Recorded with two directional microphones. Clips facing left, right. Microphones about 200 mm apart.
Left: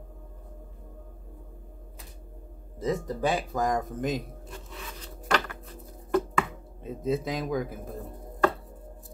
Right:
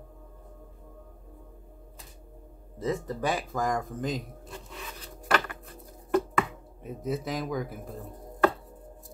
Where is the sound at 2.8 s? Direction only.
15° left (ahead or behind).